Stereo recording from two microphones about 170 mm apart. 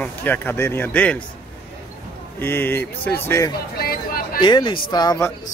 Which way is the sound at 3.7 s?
60° left (ahead or behind).